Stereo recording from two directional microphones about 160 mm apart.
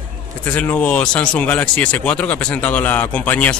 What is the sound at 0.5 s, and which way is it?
Speech, 10° left (ahead or behind).